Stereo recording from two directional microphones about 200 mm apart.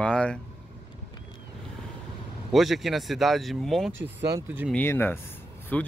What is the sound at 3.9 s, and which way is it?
Speech, 65° right (ahead or behind).